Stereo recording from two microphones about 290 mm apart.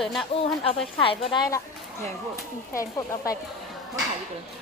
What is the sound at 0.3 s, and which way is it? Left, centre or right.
A woman's voice, centre.